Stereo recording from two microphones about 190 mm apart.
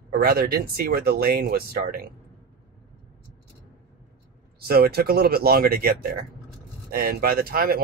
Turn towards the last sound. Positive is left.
turn(degrees=-50)  # may be behind; listen again after turning